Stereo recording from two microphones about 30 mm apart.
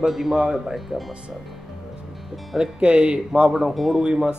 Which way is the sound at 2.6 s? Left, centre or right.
Right.